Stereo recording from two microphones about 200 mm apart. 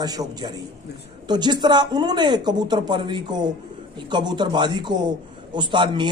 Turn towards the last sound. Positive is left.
turn(degrees=-25)  # may be behind; listen again after turning